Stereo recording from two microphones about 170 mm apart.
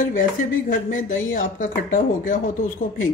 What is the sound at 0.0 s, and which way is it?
Speech, 50° left (ahead or behind).